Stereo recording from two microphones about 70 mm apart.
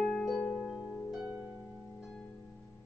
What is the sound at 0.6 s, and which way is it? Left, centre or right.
Music, centre.